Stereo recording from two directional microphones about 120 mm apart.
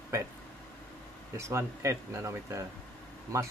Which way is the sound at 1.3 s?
25° right (ahead or behind).